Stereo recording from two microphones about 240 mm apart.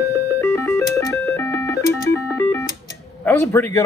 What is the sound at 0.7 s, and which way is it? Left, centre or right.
Music, centre.